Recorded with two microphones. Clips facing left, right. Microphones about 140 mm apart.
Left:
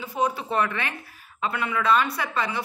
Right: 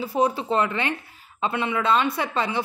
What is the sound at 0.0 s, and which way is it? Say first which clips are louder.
Speech: right 4 dB; 30° right (ahead or behind).